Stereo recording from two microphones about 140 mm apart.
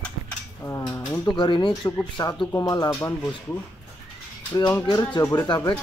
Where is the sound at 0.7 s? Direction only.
20° left (ahead or behind).